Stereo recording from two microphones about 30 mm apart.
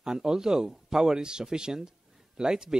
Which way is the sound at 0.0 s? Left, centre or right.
Right.